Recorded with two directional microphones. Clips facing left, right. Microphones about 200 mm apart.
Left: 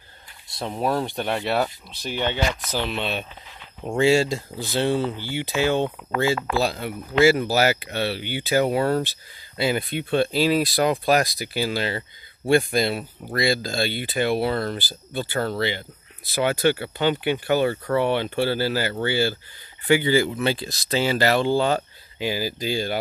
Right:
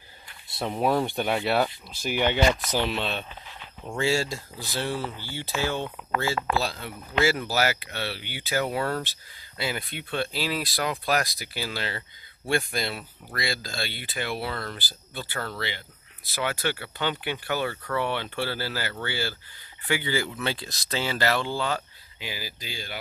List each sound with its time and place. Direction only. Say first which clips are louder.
0.5 s speech: even; 5° right (ahead or behind)
2.0 s speech: right 1 dB; 15° right (ahead or behind)
2.7 s speech: left 1 dB; 10° left (ahead or behind)
3.8 s speech: left 7 dB; 20° left (ahead or behind)
14.5 s speech: left 9 dB; 35° left (ahead or behind)
14.8 s speech: left 9 dB; 15° left (ahead or behind)
15.3 s speech: left 9 dB; 30° left (ahead or behind)
16.3 s speech: left 8 dB; 20° left (ahead or behind)
21.5 s speech: left 8 dB; 25° left (ahead or behind)